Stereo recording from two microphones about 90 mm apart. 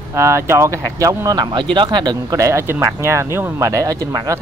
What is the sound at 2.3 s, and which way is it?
Speech, 30° right (ahead or behind).